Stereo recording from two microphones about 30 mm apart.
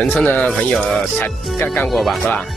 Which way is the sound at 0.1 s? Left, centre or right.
Left.